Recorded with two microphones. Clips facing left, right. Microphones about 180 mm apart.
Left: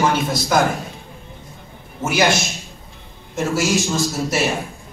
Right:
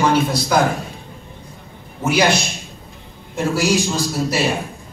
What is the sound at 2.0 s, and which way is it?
A man's voice, 25° left (ahead or behind).